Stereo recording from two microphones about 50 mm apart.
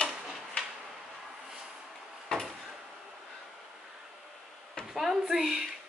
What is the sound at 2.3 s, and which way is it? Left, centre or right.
Drawer open or close, centre.